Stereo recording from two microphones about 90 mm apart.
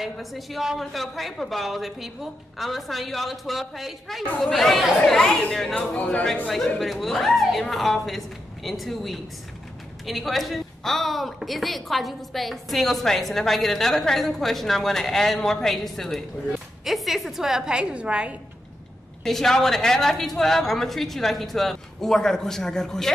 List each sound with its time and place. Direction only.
0.0 s a woman's voice: centre (ahead or behind)
5.8 s speech: 15° left (ahead or behind)
6.8 s a woman's voice: centre (ahead or behind)
19.2 s a woman's voice: 5° left (ahead or behind)